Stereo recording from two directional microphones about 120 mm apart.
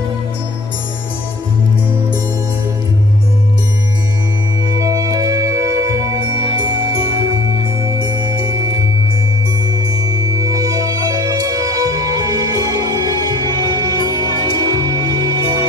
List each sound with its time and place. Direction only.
4.7 s music: 30° right (ahead or behind)
10.3 s music: 25° right (ahead or behind)